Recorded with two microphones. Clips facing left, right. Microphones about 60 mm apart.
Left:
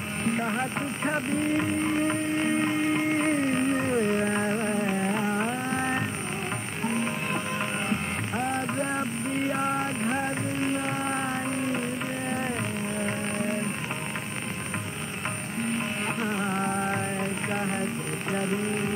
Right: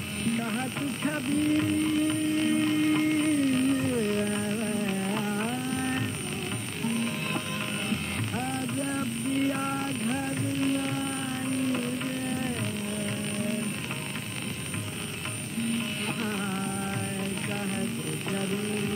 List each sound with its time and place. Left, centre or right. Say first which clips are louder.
0.2 s speech: left 2 dB; left
3.3 s music: even; left
9.5 s music: left 2 dB; left
16.2 s music: left 4 dB; left
16.6 s music: left 5 dB; left
18.3 s vehicle: left 3 dB; left